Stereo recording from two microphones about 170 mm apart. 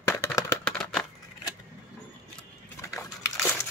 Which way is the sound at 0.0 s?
15° left (ahead or behind).